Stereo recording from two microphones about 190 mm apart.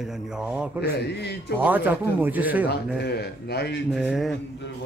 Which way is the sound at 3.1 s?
55° left (ahead or behind).